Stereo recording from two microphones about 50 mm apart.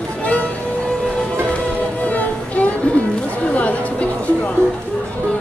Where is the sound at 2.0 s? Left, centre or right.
Left.